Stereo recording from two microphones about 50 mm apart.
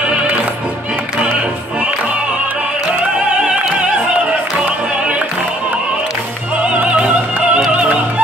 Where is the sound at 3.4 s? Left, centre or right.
Right.